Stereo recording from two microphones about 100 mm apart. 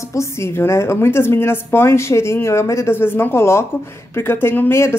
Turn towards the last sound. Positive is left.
turn(degrees=25)  # may be behind; listen again after turning